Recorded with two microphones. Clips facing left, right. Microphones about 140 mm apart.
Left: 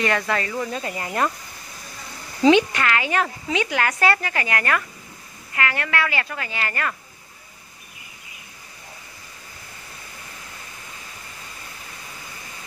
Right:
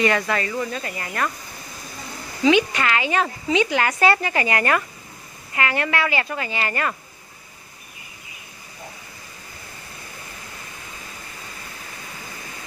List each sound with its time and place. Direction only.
0.0 s speech: 5° right (ahead or behind); by 1.3 s 15° left (ahead or behind)
2.7 s speech: 15° right (ahead or behind)